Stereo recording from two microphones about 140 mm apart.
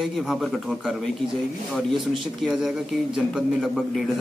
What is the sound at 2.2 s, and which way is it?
A man's voice, centre (ahead or behind).